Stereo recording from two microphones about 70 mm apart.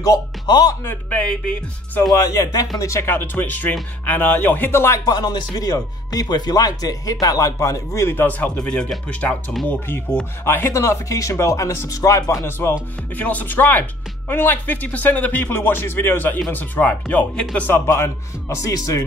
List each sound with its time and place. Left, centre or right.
0.5 s speech: left
1.1 s speech: centre
2.1 s speech: left
2.8 s speech: left
3.1 s speech: left
5.0 s speech: left
8.1 s speech: left
8.5 s speech: centre
9.7 s speech: left
10.7 s speech: left
11.9 s speech: left
12.4 s speech: left
17.8 s speech: left
18.7 s speech: left